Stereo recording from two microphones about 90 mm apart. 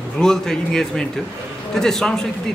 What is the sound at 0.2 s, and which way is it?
A man's voice, 5° left (ahead or behind).